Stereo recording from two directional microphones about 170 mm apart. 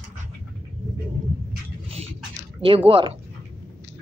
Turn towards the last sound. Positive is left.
turn(degrees=-30)  # may be behind; listen again after turning